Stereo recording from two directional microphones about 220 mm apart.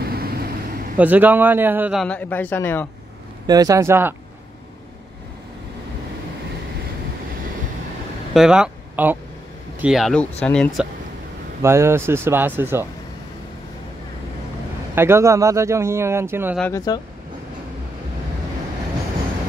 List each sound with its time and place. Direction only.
0.0 s vehicle: 45° right (ahead or behind)
0.9 s a man's voice: 10° right (ahead or behind); by 2.9 s 10° left (ahead or behind)
3.4 s speech: 15° right (ahead or behind)
8.3 s a man's voice: centre (ahead or behind)
11.6 s speech: 10° right (ahead or behind)
15.0 s speech: 10° right (ahead or behind)
16.5 s speech: 5° left (ahead or behind)